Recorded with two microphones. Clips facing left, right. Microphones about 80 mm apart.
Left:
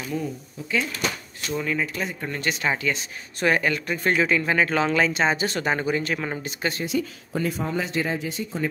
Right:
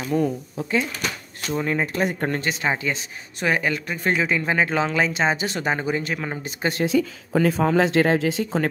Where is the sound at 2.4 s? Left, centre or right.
Right.